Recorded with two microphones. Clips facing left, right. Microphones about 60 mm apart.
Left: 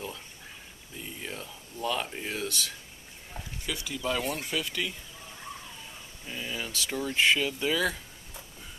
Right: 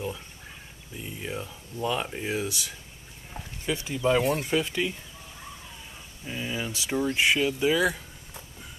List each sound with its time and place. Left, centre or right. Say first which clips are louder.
0.9 s speech: right 4 dB; centre
3.6 s speech: right 7 dB; right
6.2 s speech: right 4 dB; centre